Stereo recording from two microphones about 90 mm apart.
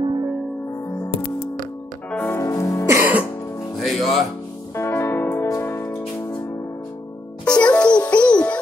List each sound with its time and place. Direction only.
0.0 s music: 50° right (ahead or behind)
2.0 s music: 20° left (ahead or behind)
2.3 s music: 35° left (ahead or behind)
3.8 s music: centre (ahead or behind)
4.7 s music: 30° left (ahead or behind)
7.4 s music: 10° left (ahead or behind)